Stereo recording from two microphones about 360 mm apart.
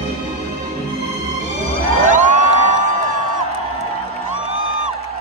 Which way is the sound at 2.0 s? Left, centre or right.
Right.